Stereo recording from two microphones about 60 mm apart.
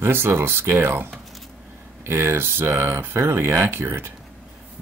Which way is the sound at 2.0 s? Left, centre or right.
Right.